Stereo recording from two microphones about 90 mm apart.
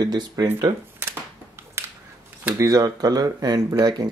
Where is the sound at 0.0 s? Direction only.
50° right (ahead or behind).